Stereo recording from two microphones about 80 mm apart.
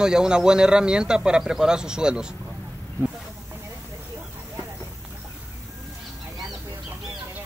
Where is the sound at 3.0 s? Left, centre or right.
Right.